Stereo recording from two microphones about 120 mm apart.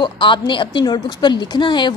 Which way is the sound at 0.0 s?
45° left (ahead or behind).